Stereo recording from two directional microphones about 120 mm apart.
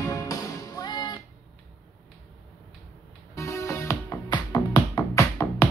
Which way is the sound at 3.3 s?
25° left (ahead or behind).